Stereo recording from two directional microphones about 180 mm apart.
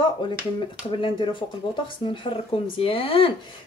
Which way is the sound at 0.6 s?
30° left (ahead or behind).